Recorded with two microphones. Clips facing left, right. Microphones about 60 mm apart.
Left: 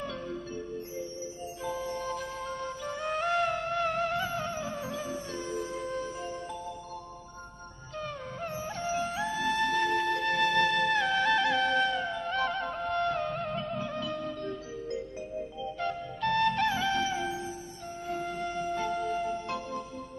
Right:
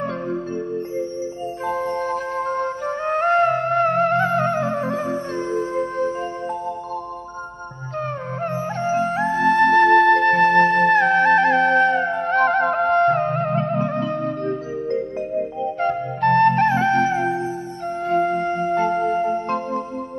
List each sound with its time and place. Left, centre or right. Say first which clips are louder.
1.7 s music: right 11 dB; right
8.4 s music: right 11 dB; right
18.0 s music: right 14 dB; right